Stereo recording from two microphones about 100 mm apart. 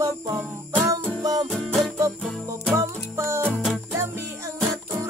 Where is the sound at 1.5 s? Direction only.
5° left (ahead or behind).